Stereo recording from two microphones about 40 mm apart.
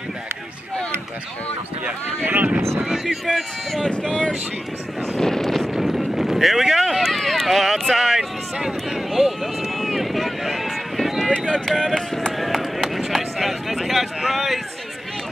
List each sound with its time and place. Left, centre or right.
2.2 s speech: right
3.1 s run: centre
3.8 s speech: left
5.1 s vehicle: centre
5.7 s a sound: centre
6.9 s run: centre
7.9 s speech: centre
9.1 s vehicle: centre
11.3 s speech: left
12.3 s run: centre